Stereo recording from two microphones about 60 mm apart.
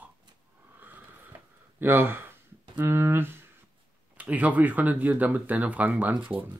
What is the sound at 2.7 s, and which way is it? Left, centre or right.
Speech, right.